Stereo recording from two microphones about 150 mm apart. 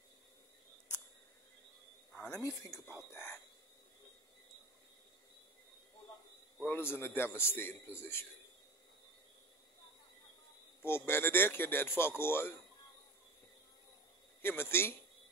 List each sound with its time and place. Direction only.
2.3 s a man's voice: 20° left (ahead or behind)
6.6 s a man's voice: 15° left (ahead or behind)
10.8 s a man's voice: 15° left (ahead or behind)
14.4 s a man's voice: 15° left (ahead or behind)